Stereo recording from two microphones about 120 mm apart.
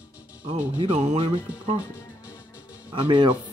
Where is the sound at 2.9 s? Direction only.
45° right (ahead or behind).